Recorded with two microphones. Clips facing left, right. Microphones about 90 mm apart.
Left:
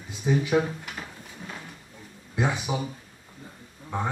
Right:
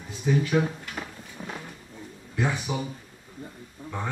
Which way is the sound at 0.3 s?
20° left (ahead or behind).